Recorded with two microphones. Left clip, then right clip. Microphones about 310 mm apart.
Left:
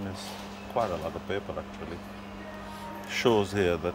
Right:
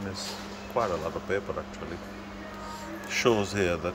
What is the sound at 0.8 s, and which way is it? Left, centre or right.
Speech, centre.